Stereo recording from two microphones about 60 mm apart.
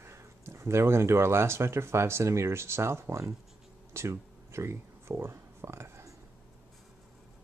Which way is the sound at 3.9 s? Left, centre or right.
Right.